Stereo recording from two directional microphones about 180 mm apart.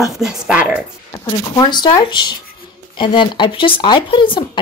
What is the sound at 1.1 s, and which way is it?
Speech, 25° left (ahead or behind).